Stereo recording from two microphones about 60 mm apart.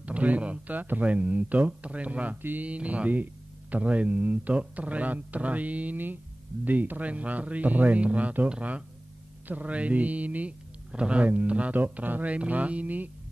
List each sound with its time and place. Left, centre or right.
0.0 s speech: right